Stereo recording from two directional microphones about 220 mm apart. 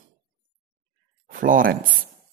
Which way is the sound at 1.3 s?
40° right (ahead or behind).